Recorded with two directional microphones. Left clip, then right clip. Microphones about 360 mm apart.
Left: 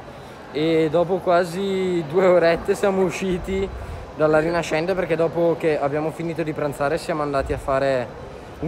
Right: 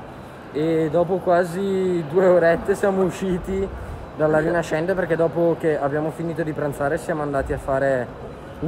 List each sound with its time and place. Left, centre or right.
0.9 s speech: centre
3.3 s speech: centre
4.2 s speech: centre